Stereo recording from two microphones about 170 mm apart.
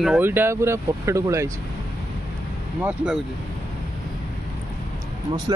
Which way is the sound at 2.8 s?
10° right (ahead or behind).